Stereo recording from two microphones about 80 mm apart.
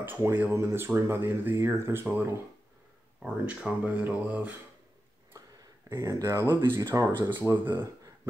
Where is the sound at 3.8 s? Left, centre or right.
Right.